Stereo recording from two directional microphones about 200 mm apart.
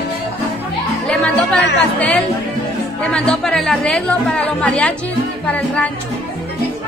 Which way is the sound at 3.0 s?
5° left (ahead or behind).